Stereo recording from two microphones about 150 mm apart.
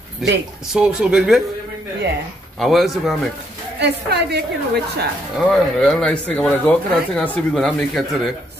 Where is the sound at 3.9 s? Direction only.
90° right.